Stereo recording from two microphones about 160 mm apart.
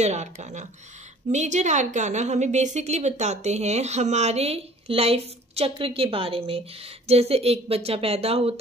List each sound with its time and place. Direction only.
0.0 s a woman's voice: 45° right (ahead or behind)